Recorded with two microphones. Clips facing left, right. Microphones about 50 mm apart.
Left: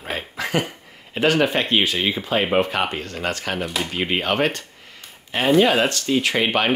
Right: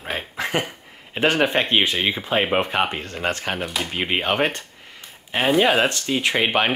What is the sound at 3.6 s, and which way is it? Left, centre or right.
Speech, centre.